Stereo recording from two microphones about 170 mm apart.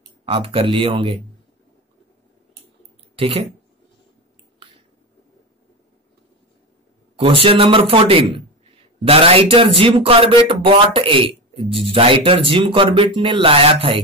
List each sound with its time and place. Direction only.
0.2 s speech: 30° right (ahead or behind)
3.2 s speech: 35° right (ahead or behind)
7.2 s speech: 35° right (ahead or behind)